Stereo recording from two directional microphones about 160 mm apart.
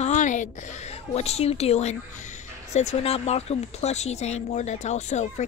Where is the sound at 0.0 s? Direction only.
50° left (ahead or behind).